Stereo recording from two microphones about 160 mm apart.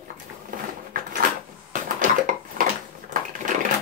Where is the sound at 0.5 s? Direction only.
60° right (ahead or behind).